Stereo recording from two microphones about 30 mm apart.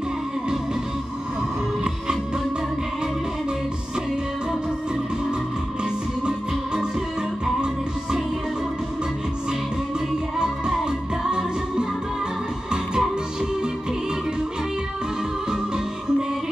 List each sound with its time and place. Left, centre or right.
6.2 s music: right
10.4 s music: right
15.5 s music: right